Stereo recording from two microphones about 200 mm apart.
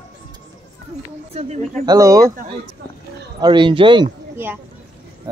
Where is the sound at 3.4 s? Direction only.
25° right (ahead or behind).